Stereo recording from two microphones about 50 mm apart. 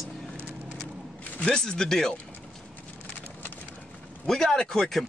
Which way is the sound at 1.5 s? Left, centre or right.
Centre.